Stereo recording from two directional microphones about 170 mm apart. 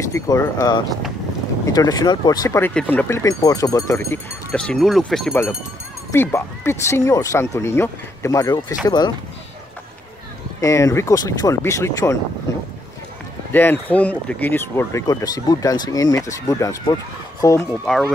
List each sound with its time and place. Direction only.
0.1 s speech: 20° left (ahead or behind)
4.5 s speech: 5° left (ahead or behind)
6.1 s speech: 15° left (ahead or behind)
10.6 s speech: 20° left (ahead or behind)
13.5 s speech: 10° left (ahead or behind)
17.9 s speech: 5° left (ahead or behind)